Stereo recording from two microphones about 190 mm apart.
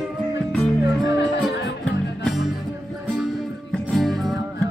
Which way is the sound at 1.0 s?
65° left (ahead or behind).